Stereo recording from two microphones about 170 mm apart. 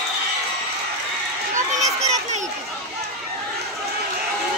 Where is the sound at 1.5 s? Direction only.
40° right (ahead or behind).